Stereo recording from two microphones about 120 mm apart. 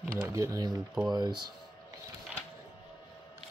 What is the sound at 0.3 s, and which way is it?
Speech, 25° right (ahead or behind).